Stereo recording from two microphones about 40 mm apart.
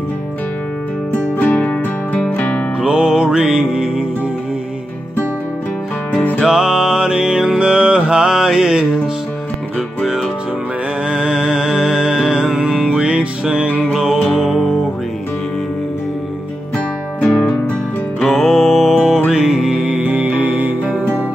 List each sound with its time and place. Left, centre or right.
1.1 s music: left
2.8 s music: right
6.4 s mantra: centre
11.1 s music: right
13.0 s music: right
13.9 s music: centre
14.3 s music: centre
18.2 s music: centre
19.9 s music: right